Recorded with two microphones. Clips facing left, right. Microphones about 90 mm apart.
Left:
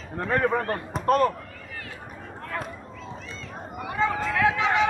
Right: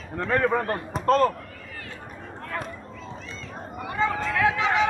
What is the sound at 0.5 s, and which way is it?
Speech, 35° right (ahead or behind).